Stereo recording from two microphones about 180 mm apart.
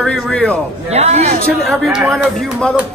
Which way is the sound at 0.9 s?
35° right (ahead or behind).